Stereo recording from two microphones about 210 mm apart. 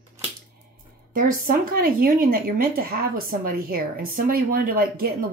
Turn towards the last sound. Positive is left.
turn(degrees=-45)  # may be behind; listen again after turning